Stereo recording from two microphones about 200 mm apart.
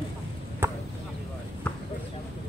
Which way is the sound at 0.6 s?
10° right (ahead or behind).